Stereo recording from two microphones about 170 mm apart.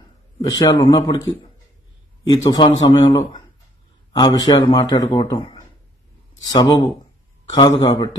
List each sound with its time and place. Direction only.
0.4 s speech: 20° left (ahead or behind)